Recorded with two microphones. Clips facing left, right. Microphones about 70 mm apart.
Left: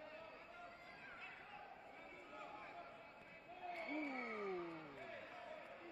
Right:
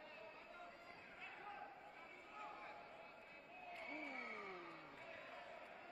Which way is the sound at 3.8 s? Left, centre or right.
Left.